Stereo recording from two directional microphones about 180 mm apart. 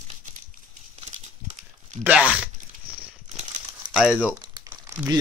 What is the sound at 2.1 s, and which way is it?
Speech, 10° right (ahead or behind).